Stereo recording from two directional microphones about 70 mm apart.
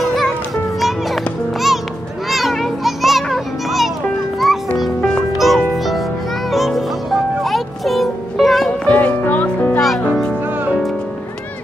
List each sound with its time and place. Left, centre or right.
0.0 s music: centre
5.4 s music: centre
8.8 s music: centre
9.8 s music: centre